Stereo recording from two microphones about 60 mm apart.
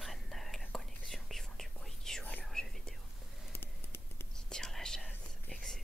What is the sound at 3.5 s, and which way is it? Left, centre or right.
Typing, left.